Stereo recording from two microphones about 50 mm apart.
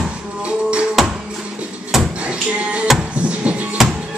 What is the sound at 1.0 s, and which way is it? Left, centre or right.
Music, centre.